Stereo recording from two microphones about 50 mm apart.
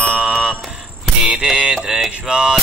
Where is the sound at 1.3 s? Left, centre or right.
Centre.